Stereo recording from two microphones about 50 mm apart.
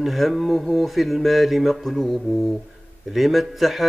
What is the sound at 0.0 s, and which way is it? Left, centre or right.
Speech, centre.